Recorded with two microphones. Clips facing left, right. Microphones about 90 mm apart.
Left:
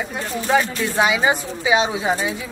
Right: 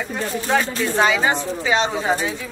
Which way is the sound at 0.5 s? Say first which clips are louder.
Left 2 dB; 5° left (ahead or behind).